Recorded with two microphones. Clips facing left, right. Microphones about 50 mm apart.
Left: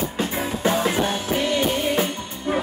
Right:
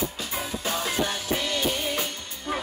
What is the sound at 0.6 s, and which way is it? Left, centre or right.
Music, left.